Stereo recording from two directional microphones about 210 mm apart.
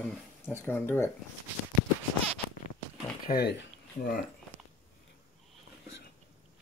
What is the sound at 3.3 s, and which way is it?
Speech, 50° left (ahead or behind).